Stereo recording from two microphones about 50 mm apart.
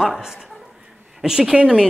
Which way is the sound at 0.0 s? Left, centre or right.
Centre.